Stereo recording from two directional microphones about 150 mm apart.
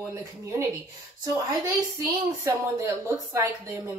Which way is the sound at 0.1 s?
20° right (ahead or behind).